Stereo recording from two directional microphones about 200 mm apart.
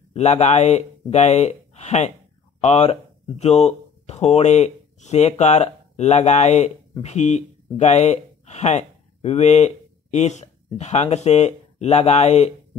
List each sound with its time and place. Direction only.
0.1 s speech: 35° left (ahead or behind)